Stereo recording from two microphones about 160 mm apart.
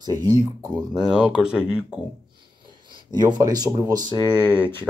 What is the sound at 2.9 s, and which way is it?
Speech, 25° right (ahead or behind).